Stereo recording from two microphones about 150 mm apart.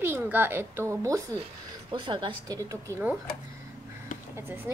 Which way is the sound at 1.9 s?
30° right (ahead or behind).